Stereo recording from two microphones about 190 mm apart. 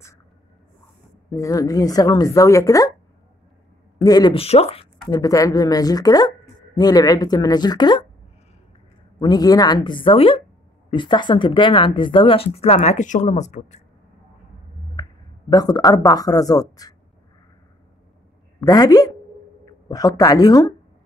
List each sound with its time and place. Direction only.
1.3 s a woman's voice: 15° left (ahead or behind)
4.0 s speech: 20° left (ahead or behind)
5.1 s speech: 20° left (ahead or behind)
9.2 s speech: 20° left (ahead or behind); by 13.7 s 40° left (ahead or behind)
15.0 s a sound: 20° left (ahead or behind)
15.5 s speech: 20° left (ahead or behind)
18.6 s a woman's voice: 20° left (ahead or behind)